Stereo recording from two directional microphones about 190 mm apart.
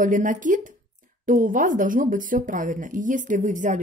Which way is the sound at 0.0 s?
45° right (ahead or behind).